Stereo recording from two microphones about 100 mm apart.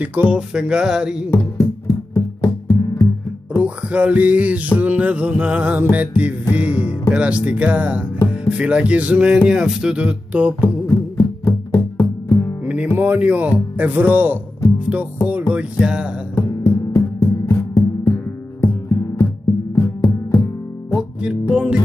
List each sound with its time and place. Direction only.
0.0 s music: 15° right (ahead or behind)
1.9 s music: 30° left (ahead or behind)
3.5 s music: 15° right (ahead or behind)
6.5 s speech: 15° right (ahead or behind)
8.5 s music: 15° right (ahead or behind)
10.6 s music: 30° left (ahead or behind)
12.6 s music: 15° right (ahead or behind)
13.7 s speech: 20° right (ahead or behind)
15.2 s music: 15° right (ahead or behind)
16.4 s music: 35° left (ahead or behind)
20.9 s music: 10° right (ahead or behind)